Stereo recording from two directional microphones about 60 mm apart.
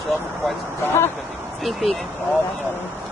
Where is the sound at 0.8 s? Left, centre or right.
Left.